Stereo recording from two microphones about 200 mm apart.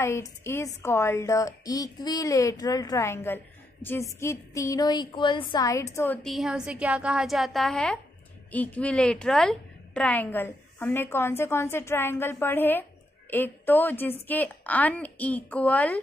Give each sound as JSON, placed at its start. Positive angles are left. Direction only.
{"t": 0.0, "sound": "a woman's voice", "side_deg": 15}
{"t": 6.2, "sound": "a woman's voice", "side_deg": 0}